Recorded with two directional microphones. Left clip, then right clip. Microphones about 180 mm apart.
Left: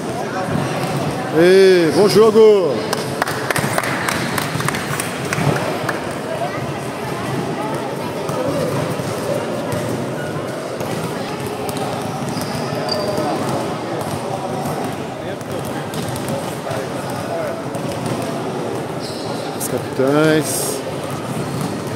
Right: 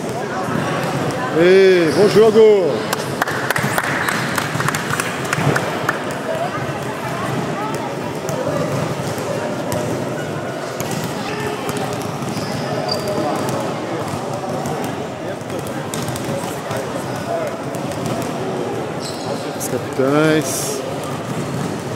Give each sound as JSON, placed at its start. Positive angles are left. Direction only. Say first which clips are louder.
{"t": 1.4, "sound": "a man's voice", "louder": "left 1 dB", "side_deg": 25}
{"t": 20.2, "sound": "speech", "louder": "left 1 dB", "side_deg": 5}